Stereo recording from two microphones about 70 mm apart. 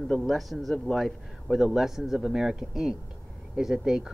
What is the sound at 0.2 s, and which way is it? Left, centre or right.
A man's voice, centre.